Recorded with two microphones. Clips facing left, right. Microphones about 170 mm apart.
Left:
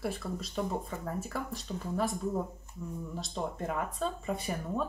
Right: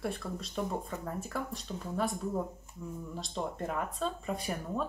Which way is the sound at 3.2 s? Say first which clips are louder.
Even; centre (ahead or behind).